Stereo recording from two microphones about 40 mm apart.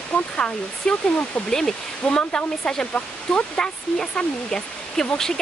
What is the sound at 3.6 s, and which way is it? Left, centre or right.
Speech, centre.